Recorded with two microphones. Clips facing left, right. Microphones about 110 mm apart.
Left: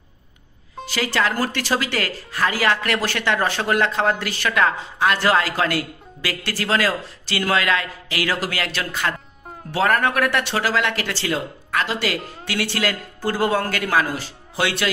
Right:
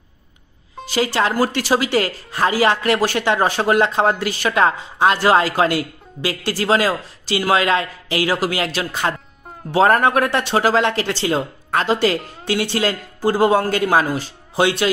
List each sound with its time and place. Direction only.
0.8 s speech: 20° right (ahead or behind)